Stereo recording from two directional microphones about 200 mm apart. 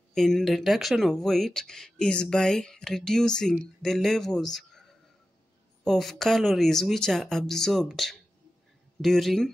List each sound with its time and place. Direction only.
0.1 s speech: centre (ahead or behind)
5.9 s speech: centre (ahead or behind)